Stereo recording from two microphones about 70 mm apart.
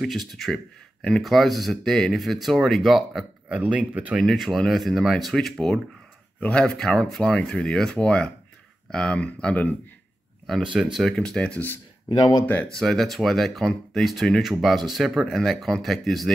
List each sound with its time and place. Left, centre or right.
0.0 s speech: centre
3.4 s speech: centre
4.2 s speech: centre; by 9.8 s left
10.6 s speech: centre
11.1 s speech: centre
12.1 s speech: left
12.6 s speech: centre